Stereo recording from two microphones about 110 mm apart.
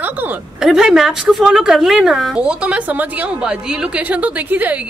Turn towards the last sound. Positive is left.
turn(degrees=-15)  # may be behind; listen again after turning